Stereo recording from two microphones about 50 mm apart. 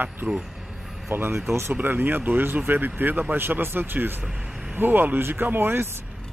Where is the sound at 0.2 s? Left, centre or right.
Right.